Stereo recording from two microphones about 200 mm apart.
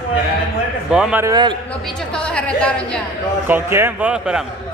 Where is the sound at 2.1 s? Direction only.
5° left (ahead or behind).